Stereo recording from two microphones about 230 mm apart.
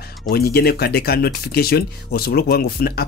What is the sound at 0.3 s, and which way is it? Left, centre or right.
Speech, left.